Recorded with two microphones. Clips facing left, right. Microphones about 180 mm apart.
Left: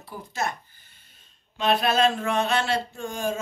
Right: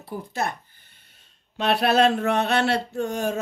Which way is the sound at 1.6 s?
65° right (ahead or behind).